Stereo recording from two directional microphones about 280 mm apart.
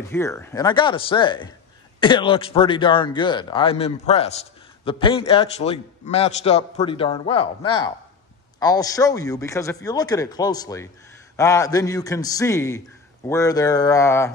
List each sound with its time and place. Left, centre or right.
0.1 s a man's voice: centre